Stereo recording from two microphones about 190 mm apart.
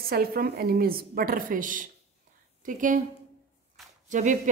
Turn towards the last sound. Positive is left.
turn(degrees=-40)  # may be behind; listen again after turning